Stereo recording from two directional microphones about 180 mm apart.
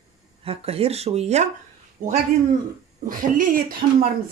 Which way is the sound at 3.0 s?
50° right (ahead or behind).